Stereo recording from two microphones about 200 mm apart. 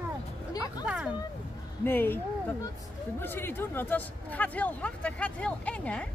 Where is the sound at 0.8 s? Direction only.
5° right (ahead or behind).